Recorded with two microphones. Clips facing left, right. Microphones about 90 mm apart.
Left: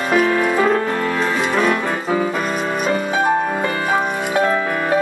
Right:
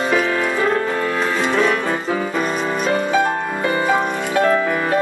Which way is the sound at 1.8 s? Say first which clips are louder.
Left 2 dB; 5° left (ahead or behind).